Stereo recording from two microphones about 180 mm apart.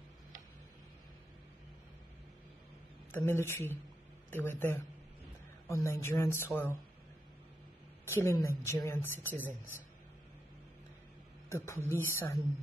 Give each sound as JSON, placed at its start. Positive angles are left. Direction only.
{"t": 3.1, "sound": "a woman's voice", "side_deg": 15}
{"t": 8.0, "sound": "a woman's voice", "side_deg": 15}
{"t": 9.4, "sound": "speech", "side_deg": -10}
{"t": 11.4, "sound": "a woman's voice", "side_deg": 15}